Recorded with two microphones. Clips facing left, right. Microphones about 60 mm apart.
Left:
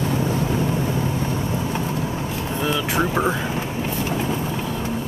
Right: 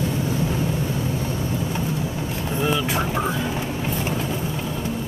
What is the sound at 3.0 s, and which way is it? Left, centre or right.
Speech, left.